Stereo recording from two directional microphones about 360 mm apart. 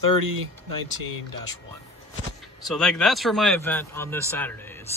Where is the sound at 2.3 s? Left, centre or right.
Centre.